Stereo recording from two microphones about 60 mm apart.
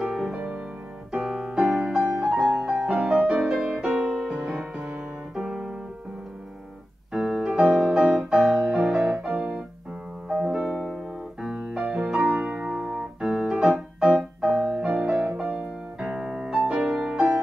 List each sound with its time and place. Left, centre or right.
0.0 s music: centre
2.2 s music: centre
7.1 s music: centre
10.7 s piano: centre
11.4 s piano: centre